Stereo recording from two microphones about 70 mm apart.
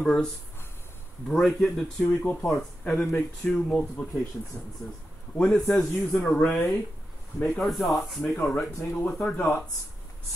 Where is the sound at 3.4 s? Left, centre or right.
Centre.